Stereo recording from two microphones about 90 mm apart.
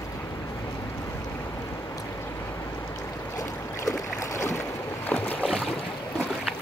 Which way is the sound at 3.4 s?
40° left (ahead or behind).